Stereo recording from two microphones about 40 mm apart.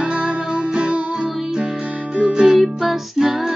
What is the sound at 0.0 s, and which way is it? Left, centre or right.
Music, centre.